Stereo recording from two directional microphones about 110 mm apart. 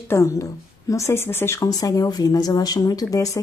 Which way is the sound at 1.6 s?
35° left (ahead or behind).